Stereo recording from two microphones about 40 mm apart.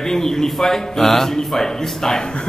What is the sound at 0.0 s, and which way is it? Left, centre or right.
A man's voice, centre.